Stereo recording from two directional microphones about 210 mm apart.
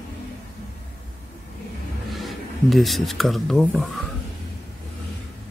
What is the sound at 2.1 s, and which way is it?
Speech, centre (ahead or behind).